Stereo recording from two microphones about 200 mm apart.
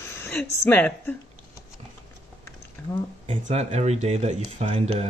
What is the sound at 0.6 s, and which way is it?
Speech, 10° left (ahead or behind).